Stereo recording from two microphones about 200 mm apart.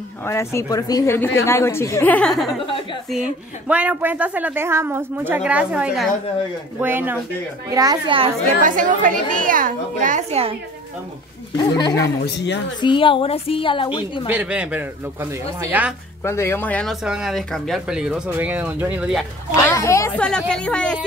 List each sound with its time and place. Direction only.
0.2 s a woman's voice: 15° left (ahead or behind)
2.6 s a woman's voice: 25° left (ahead or behind)
3.1 s a woman's voice: 5° right (ahead or behind); by 8.3 s 25° right (ahead or behind)
8.6 s a woman's voice: 40° right (ahead or behind)
11.9 s a woman's voice: 55° left (ahead or behind)
12.8 s a woman's voice: 25° left (ahead or behind)
14.3 s a woman's voice: 5° right (ahead or behind)
16.3 s a woman's voice: 10° left (ahead or behind)
17.0 s speech: 5° right (ahead or behind)
19.5 s a woman's voice: 15° left (ahead or behind)
20.2 s speech: 5° left (ahead or behind)